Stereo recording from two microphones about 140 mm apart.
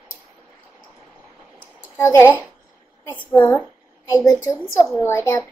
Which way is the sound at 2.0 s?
20° left (ahead or behind).